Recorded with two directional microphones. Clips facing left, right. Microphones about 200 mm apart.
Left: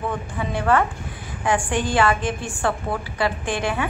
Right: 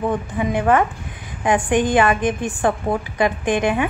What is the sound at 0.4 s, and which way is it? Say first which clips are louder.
A woman's voice: right 3 dB; 15° right (ahead or behind).